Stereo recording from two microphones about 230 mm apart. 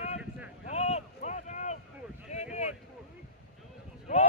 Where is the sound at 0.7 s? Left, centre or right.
Left.